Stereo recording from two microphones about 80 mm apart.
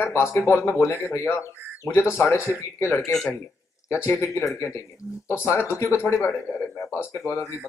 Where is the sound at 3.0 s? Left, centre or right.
Centre.